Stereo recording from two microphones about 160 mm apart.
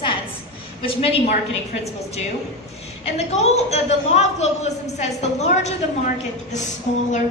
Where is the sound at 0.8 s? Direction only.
35° left (ahead or behind).